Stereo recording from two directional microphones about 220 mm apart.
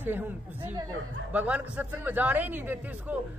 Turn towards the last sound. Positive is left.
turn(degrees=-10)  # may be behind; listen again after turning